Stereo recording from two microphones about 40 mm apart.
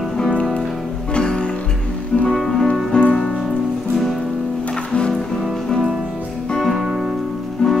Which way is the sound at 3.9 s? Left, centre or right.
Centre.